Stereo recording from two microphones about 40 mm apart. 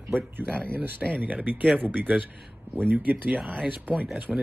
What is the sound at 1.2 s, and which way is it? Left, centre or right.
Speech, right.